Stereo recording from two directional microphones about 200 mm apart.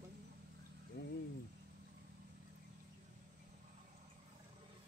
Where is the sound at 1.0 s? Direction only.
55° left (ahead or behind).